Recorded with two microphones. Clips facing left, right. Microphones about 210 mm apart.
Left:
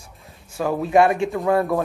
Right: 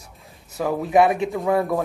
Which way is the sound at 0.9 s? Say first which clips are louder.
Left 1 dB; 20° right (ahead or behind).